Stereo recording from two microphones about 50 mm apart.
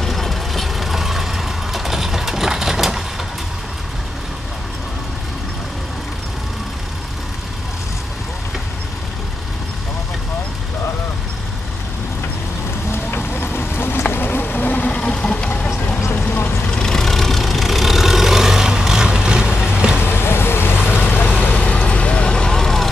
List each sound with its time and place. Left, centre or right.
0.0 s vehicle: centre
12.9 s boat: left
14.1 s insect: left
14.9 s vehicle: left
16.7 s vehicle: centre
19.5 s vehicle: left; by 22.8 s centre